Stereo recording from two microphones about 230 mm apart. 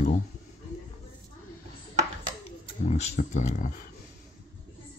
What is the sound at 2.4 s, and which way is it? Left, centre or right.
Speech, left.